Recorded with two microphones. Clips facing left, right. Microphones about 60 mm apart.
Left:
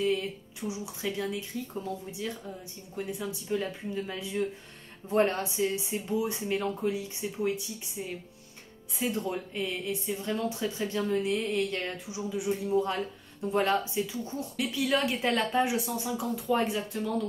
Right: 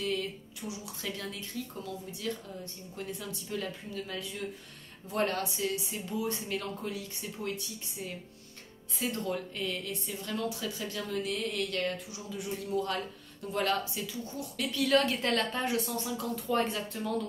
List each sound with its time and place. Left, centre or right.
0.0 s speech: left
9.1 s speech: centre